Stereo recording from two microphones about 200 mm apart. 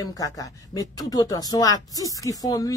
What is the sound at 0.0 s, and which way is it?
Speech, 15° left (ahead or behind).